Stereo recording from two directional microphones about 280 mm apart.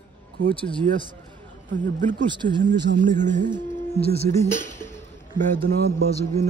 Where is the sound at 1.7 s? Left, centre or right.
Right.